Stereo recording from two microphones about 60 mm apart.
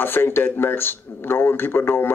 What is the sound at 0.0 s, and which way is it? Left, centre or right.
Speech, left.